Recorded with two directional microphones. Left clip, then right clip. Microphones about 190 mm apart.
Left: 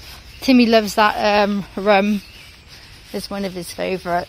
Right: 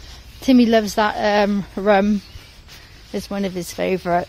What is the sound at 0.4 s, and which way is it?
Speech, 10° right (ahead or behind).